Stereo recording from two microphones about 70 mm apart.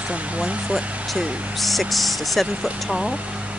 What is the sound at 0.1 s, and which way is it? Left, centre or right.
Speech, centre.